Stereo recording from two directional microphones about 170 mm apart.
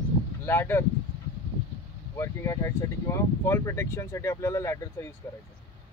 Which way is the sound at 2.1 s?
15° left (ahead or behind).